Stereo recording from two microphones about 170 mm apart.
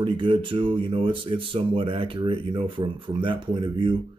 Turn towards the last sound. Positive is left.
turn(degrees=-30)  # may be behind; listen again after turning